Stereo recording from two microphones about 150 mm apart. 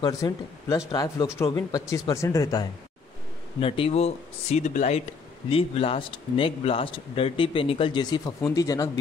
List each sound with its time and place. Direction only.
0.0 s speech: 20° left (ahead or behind)
3.5 s speech: 35° left (ahead or behind)
5.5 s speech: 40° left (ahead or behind); by 8.9 s 25° left (ahead or behind)